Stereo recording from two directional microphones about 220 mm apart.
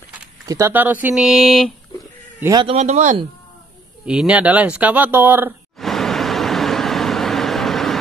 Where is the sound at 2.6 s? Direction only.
30° right (ahead or behind).